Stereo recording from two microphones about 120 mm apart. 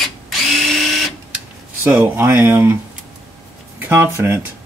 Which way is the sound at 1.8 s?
15° right (ahead or behind).